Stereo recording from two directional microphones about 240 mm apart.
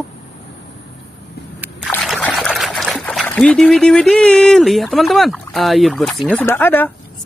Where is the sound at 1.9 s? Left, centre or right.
Centre.